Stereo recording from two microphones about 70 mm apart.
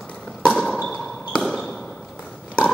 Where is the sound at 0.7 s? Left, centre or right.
Centre.